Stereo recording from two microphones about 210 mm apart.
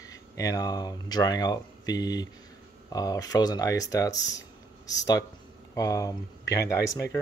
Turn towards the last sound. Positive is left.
turn(degrees=15)  # may be behind; listen again after turning